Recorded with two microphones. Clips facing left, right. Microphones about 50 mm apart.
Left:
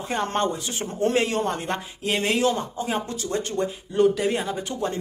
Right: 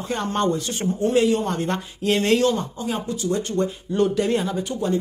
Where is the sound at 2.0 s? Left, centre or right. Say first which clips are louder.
Right 5 dB; centre.